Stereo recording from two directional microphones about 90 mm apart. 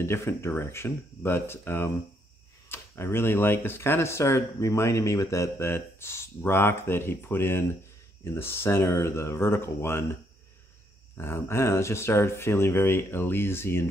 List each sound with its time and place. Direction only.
0.0 s speech: 30° left (ahead or behind)
11.1 s speech: 25° left (ahead or behind)